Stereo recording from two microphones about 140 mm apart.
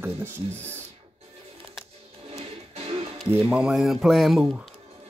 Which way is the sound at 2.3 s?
45° right (ahead or behind).